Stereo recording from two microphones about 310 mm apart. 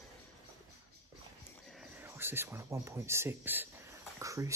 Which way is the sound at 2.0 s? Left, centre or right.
Centre.